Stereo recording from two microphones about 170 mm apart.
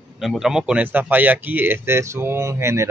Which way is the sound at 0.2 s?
Centre (ahead or behind).